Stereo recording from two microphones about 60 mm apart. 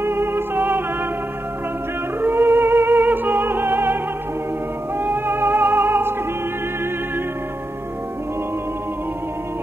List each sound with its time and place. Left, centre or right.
0.0 s music: right
2.2 s music: right